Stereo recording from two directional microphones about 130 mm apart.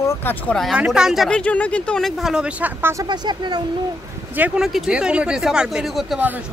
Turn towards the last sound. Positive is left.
turn(degrees=0)  # may be behind; listen again after turning